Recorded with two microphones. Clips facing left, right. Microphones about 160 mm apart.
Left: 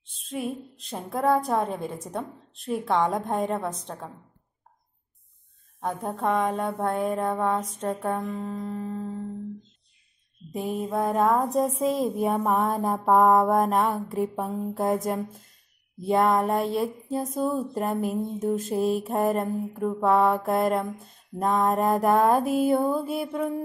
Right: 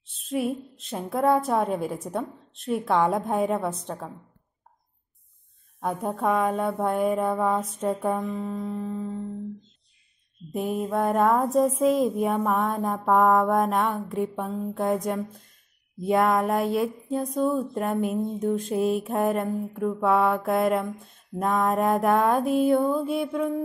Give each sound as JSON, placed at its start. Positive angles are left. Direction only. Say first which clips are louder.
{"t": 0.1, "sound": "speech", "louder": "right 4 dB", "side_deg": 0}
{"t": 5.8, "sound": "speech", "louder": "right 2 dB", "side_deg": -5}
{"t": 10.5, "sound": "speech", "louder": "right 2 dB", "side_deg": 0}
{"t": 16.0, "sound": "speech", "louder": "even", "side_deg": 0}
{"t": 16.5, "sound": "a sound", "louder": "right 1 dB", "side_deg": 30}
{"t": 16.8, "sound": "speech", "louder": "right 1 dB", "side_deg": 0}